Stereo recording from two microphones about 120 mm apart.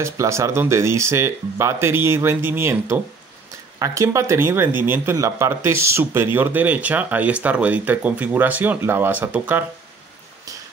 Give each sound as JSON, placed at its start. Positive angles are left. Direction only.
{"t": 0.0, "sound": "speech", "side_deg": -25}